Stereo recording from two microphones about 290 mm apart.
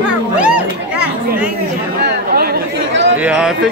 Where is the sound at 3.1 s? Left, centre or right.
Centre.